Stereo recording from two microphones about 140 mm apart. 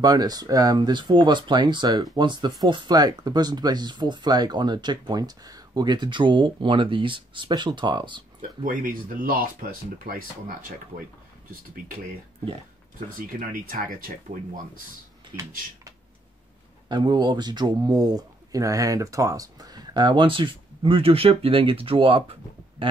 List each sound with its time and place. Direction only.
0.0 s speech: 30° right (ahead or behind)
8.4 s speech: 80° right
13.3 s speech: 75° right (ahead or behind)
16.9 s speech: 35° right (ahead or behind)